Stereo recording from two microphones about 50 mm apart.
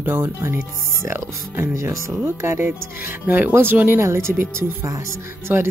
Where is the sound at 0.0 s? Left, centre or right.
Right.